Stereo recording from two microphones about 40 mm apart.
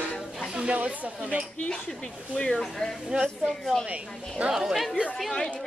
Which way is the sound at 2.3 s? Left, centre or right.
Left.